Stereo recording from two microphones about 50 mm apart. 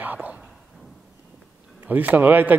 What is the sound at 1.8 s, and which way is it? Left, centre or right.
Speech, right.